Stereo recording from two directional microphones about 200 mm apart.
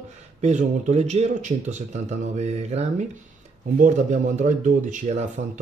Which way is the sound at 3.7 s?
40° right (ahead or behind).